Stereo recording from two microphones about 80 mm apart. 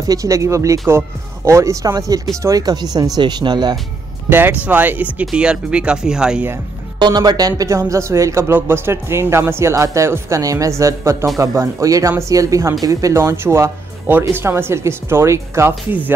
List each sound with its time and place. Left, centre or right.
0.1 s speech: right
3.2 s speech: right
4.3 s speech: right; by 6.4 s centre
7.0 s speech: right